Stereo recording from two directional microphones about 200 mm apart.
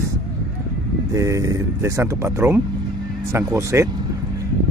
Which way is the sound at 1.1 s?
15° right (ahead or behind).